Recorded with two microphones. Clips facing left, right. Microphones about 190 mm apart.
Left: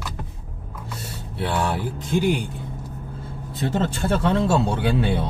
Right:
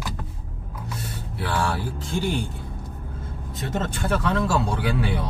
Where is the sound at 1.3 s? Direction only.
20° left (ahead or behind).